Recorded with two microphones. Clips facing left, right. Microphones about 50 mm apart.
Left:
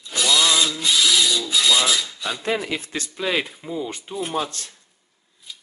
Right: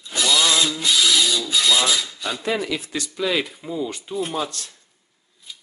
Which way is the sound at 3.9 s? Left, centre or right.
Left.